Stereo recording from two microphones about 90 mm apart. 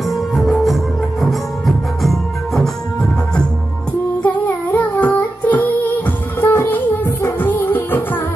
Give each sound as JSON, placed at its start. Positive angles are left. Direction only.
{"t": 0.1, "sound": "music", "side_deg": 0}
{"t": 4.2, "sound": "singing", "side_deg": 20}